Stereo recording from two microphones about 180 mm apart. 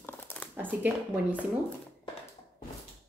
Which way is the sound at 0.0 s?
10° left (ahead or behind).